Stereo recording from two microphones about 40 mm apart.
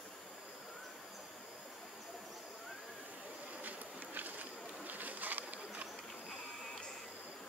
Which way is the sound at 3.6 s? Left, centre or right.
Right.